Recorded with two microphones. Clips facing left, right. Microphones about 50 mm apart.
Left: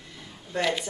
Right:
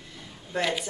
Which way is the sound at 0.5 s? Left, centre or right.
Centre.